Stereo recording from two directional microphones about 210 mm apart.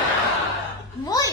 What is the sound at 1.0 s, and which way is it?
Speech, 15° left (ahead or behind).